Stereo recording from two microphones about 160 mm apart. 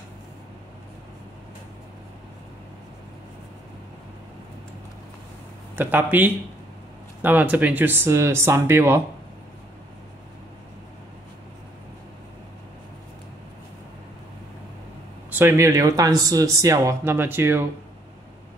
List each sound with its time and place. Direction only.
5.8 s speech: 10° right (ahead or behind)
15.2 s speech: 15° right (ahead or behind)